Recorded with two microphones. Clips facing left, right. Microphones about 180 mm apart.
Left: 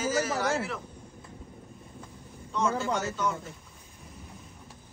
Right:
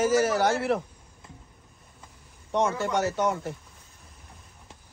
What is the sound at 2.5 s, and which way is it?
A man's voice, 65° right (ahead or behind).